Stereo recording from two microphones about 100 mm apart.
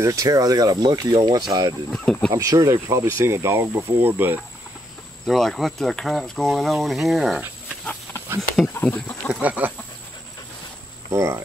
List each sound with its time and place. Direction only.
0.0 s speech: 35° right (ahead or behind)
5.2 s speech: centre (ahead or behind)
7.8 s a sound: 15° left (ahead or behind)
8.7 s speech: 15° left (ahead or behind)
9.3 s chicken: 15° right (ahead or behind)
11.1 s speech: 30° right (ahead or behind)